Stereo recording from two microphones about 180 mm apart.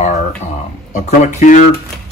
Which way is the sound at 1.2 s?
40° left (ahead or behind).